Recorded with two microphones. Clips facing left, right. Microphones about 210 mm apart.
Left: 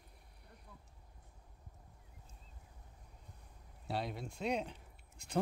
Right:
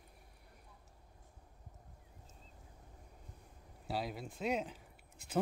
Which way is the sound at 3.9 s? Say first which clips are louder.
Even; centre (ahead or behind).